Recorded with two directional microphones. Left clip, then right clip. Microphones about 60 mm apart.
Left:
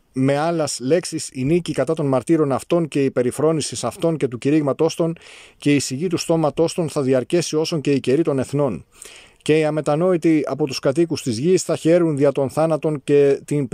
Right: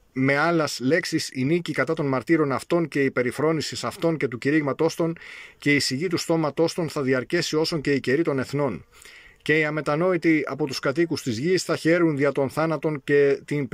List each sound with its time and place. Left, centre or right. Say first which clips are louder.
0.2 s speech: left 2 dB; left
2.4 s speech: left 4 dB; left
9.5 s speech: left 4 dB; left